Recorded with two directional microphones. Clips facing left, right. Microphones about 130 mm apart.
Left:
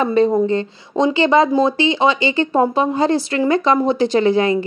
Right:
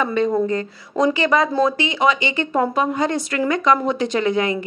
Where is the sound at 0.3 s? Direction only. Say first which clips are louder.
Left 3 dB; 25° left (ahead or behind).